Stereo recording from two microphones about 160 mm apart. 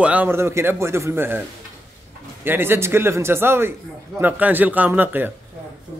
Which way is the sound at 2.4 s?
15° right (ahead or behind).